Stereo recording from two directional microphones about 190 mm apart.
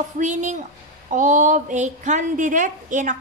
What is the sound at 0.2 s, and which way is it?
A woman's voice, 40° right (ahead or behind).